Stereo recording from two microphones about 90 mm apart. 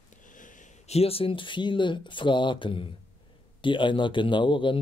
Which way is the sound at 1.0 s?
85° left.